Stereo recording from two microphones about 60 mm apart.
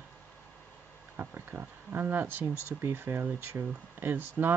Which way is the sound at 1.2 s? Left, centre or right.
Right.